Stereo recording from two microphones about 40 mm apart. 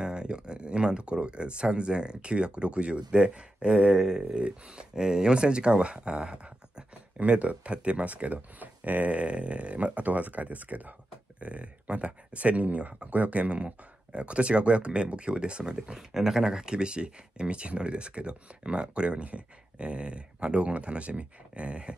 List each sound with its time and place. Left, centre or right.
0.0 s speech: right
3.9 s a sound: centre
4.4 s speech: right
7.2 s speech: right
16.1 s speech: centre; by 21.9 s right